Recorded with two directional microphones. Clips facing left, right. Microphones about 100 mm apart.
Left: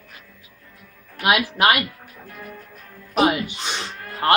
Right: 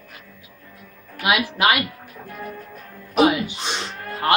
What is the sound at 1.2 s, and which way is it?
Speech, 45° left (ahead or behind).